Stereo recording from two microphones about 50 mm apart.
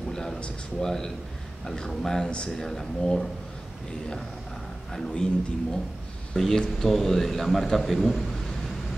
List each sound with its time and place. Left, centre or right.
0.1 s a sound: centre
0.7 s speech: centre
2.2 s speech: centre
2.5 s speech: centre
4.9 s speech: centre